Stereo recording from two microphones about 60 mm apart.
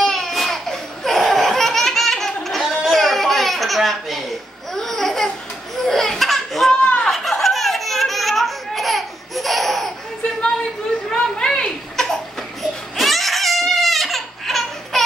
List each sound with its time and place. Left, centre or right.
0.0 s laughter: centre
6.8 s snicker: centre
7.1 s laughter: centre
11.1 s a sound: centre
12.6 s crying: centre